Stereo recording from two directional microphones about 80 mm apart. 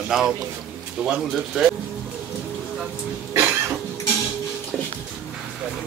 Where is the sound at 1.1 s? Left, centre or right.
Centre.